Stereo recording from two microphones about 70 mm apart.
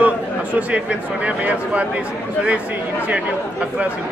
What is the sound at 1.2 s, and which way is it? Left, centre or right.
Speech, centre.